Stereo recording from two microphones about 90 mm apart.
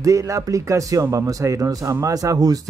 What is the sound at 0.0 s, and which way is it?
Speech, 35° right (ahead or behind).